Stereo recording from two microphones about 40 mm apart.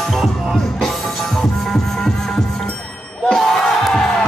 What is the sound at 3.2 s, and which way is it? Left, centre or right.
Battle cry, centre.